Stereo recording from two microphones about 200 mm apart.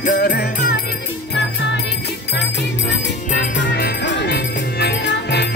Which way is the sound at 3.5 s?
55° left (ahead or behind).